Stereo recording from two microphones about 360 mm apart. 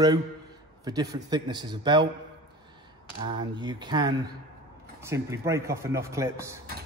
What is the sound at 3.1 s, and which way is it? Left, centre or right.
A man's voice, centre.